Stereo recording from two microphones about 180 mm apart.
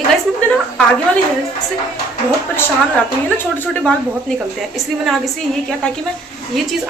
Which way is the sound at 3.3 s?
10° left (ahead or behind).